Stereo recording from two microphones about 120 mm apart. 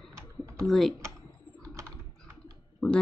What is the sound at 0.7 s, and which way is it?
Speech, centre (ahead or behind).